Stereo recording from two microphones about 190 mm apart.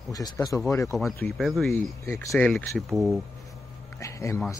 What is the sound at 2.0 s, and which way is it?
Speech, 15° left (ahead or behind).